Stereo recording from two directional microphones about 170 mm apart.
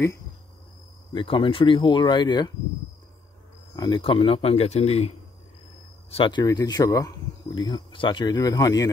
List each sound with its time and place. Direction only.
1.1 s speech: 30° left (ahead or behind)
3.7 s speech: 25° left (ahead or behind)
6.1 s speech: 30° left (ahead or behind)